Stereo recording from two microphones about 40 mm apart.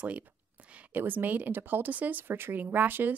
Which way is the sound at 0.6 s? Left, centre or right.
Right.